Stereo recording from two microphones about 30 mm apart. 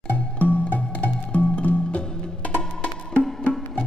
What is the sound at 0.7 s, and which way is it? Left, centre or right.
Music, left.